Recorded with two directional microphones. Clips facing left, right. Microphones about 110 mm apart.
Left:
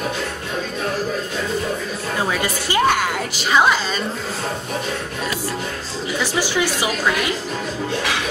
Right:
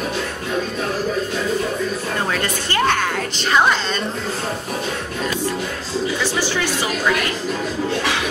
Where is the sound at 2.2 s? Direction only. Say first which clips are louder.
Even; 10° left (ahead or behind).